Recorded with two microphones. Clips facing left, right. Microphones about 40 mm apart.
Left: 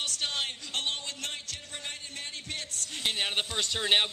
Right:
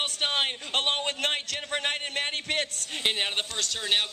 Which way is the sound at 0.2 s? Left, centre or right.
Right.